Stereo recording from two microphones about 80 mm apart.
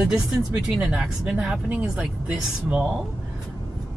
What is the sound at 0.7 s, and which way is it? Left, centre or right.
Speech, centre.